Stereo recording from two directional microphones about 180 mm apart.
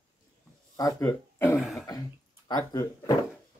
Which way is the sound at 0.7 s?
20° left (ahead or behind).